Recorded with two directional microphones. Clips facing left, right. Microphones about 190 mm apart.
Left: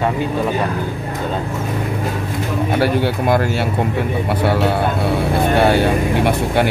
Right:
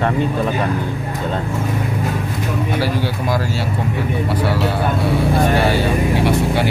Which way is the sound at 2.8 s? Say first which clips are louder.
Left 4 dB; 60° left (ahead or behind).